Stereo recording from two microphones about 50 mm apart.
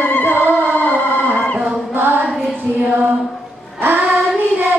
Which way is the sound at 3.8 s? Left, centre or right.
Right.